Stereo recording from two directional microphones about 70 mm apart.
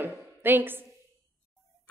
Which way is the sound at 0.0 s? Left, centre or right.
Right.